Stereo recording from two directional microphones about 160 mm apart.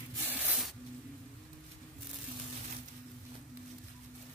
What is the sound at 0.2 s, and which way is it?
Spray, 10° right (ahead or behind).